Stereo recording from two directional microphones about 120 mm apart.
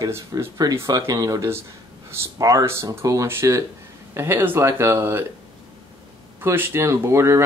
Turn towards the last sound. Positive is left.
turn(degrees=-20)  # may be behind; listen again after turning